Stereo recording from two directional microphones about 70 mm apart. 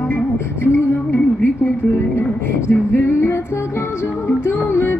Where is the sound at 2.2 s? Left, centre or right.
Left.